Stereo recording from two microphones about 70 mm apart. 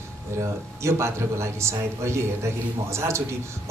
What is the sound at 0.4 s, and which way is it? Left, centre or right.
A man's voice, right.